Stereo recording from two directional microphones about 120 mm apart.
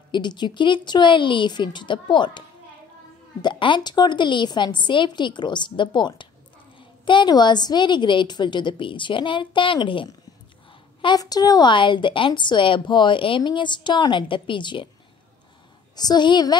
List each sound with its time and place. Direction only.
0.1 s a woman's voice: 40° left (ahead or behind)
3.4 s a woman's voice: 40° left (ahead or behind)
16.0 s a woman's voice: 35° left (ahead or behind)